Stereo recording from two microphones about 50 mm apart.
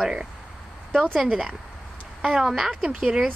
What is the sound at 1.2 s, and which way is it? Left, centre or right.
A woman's voice, centre.